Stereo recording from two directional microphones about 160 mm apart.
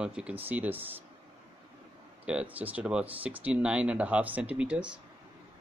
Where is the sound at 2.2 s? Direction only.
10° right (ahead or behind).